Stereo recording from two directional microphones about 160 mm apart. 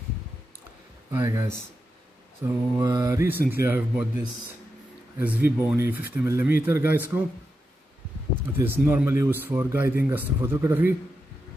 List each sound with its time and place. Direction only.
1.1 s speech: 15° right (ahead or behind)
2.4 s speech: 20° right (ahead or behind)
5.2 s speech: 10° right (ahead or behind)
8.5 s speech: 15° right (ahead or behind)